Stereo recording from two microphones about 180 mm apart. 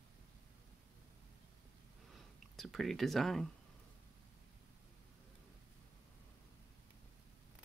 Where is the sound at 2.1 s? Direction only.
Centre (ahead or behind).